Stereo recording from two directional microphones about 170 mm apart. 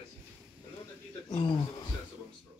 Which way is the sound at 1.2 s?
25° left (ahead or behind).